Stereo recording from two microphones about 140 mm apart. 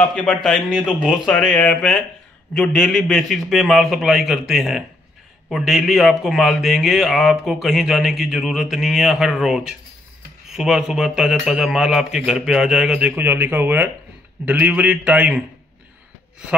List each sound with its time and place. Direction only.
0.0 s a man's voice: 10° left (ahead or behind); by 15.4 s 10° right (ahead or behind)